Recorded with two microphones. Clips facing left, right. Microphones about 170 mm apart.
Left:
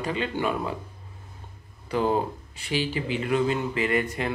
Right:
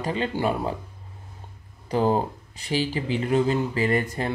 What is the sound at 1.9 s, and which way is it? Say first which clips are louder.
Speech: right 2 dB; 40° right (ahead or behind).